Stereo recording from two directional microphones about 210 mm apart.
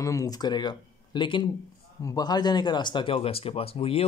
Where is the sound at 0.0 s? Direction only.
15° left (ahead or behind).